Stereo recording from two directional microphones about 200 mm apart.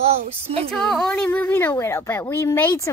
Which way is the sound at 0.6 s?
5° left (ahead or behind).